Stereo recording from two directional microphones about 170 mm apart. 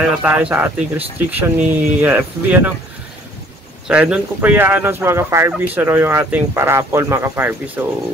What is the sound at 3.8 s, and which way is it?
Speech, 5° right (ahead or behind).